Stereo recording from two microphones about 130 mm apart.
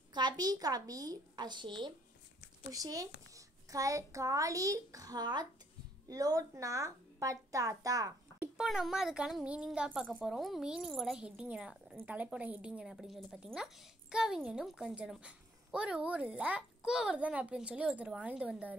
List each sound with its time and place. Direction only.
0.1 s a woman's voice: 35° right (ahead or behind)
8.4 s a child's voice: 5° right (ahead or behind)